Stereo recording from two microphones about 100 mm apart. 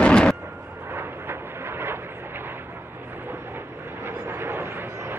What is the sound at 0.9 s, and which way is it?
Vehicle, 25° right (ahead or behind).